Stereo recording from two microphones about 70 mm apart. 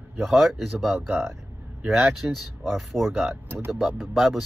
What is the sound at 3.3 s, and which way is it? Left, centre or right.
Speech, right.